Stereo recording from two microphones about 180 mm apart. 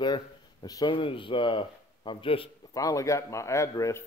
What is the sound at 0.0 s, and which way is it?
Speech, 25° left (ahead or behind).